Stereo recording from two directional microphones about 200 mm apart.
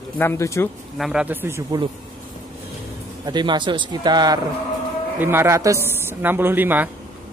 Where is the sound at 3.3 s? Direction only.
20° right (ahead or behind).